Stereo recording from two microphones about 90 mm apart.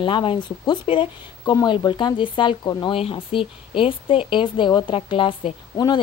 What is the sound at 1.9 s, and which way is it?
Speech, 60° left (ahead or behind).